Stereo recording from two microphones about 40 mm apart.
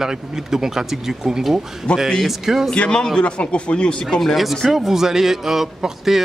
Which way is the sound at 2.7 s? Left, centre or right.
Left.